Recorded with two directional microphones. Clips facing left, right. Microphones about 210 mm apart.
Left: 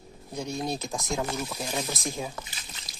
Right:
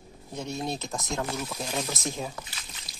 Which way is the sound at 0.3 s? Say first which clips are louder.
Left 1 dB; 5° right (ahead or behind).